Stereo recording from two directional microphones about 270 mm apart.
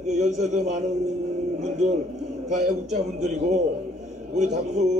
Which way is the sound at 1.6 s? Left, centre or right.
Right.